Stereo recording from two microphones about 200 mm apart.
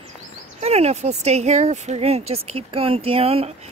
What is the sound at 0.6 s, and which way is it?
Speech, 30° right (ahead or behind).